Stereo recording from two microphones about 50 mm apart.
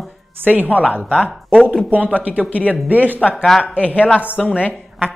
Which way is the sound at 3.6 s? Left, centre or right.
Left.